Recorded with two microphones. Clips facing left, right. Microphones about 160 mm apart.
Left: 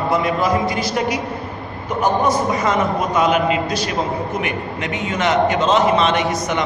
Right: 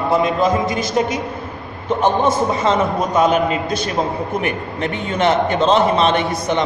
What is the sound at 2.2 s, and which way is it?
A man's voice, 25° right (ahead or behind).